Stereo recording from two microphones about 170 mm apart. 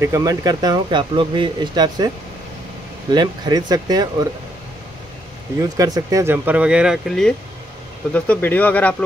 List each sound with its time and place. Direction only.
0.0 s speech: 20° right (ahead or behind)
3.2 s speech: 25° right (ahead or behind)
5.6 s speech: 20° right (ahead or behind); by 8.9 s 10° left (ahead or behind)